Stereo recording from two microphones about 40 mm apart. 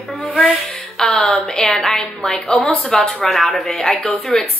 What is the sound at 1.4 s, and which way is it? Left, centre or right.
Speech, centre.